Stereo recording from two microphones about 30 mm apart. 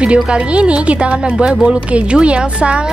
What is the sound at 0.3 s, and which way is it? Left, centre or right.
Speech, right.